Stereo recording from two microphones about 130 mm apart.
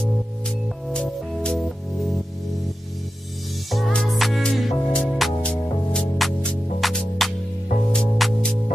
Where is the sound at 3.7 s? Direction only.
5° left (ahead or behind).